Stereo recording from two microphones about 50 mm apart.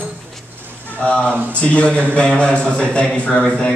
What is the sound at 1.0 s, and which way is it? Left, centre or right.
A man's voice, left.